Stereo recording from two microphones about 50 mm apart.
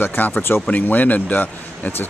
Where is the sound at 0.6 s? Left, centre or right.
Left.